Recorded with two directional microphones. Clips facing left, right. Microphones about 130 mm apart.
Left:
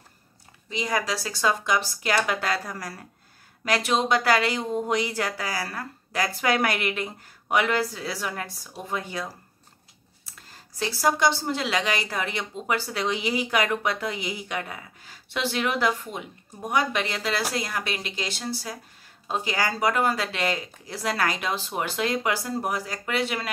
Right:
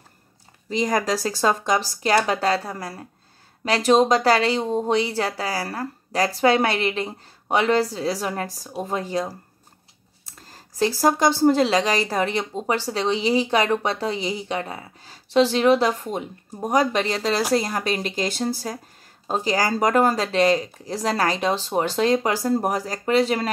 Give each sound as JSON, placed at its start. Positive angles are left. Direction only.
{"t": 0.7, "sound": "speech", "side_deg": -40}